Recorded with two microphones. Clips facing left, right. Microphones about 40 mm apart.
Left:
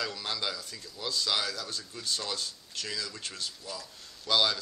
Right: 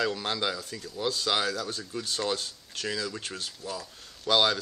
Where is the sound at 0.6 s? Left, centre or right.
Right.